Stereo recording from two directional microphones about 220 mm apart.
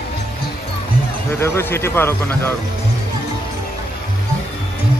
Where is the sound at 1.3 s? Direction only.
10° left (ahead or behind).